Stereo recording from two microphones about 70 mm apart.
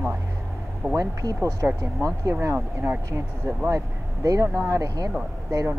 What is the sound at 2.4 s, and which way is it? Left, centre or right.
Speech, right.